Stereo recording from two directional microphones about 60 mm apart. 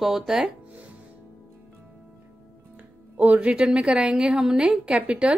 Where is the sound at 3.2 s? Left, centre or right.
Right.